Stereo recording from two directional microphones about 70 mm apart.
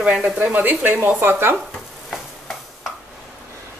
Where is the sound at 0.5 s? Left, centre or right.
Right.